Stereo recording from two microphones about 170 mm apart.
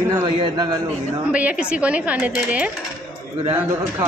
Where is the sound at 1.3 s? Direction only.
5° right (ahead or behind).